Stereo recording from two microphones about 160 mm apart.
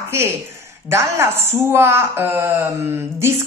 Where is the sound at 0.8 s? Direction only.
15° right (ahead or behind).